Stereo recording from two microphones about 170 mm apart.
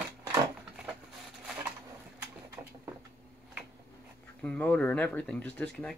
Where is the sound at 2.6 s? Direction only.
15° right (ahead or behind).